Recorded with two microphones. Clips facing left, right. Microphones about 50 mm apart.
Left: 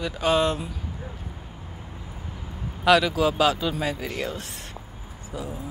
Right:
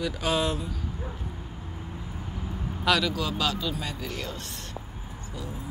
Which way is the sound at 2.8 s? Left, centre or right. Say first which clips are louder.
Left 6 dB; centre.